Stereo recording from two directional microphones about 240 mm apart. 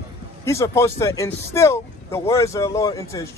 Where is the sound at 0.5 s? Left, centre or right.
Centre.